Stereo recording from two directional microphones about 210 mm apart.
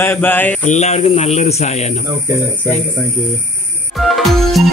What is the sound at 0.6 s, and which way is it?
Speech, 30° left (ahead or behind).